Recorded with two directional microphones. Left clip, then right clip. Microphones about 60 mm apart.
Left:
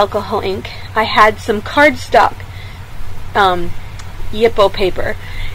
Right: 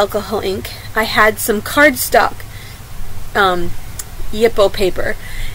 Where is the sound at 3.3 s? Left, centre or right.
Right.